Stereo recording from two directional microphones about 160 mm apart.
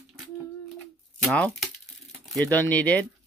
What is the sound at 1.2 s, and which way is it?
Speech, 5° left (ahead or behind).